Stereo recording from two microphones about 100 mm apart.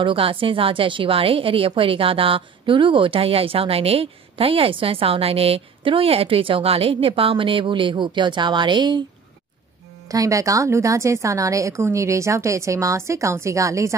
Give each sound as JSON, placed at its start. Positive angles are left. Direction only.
{"t": 0.0, "sound": "speech", "side_deg": -65}
{"t": 10.0, "sound": "a woman's voice", "side_deg": -35}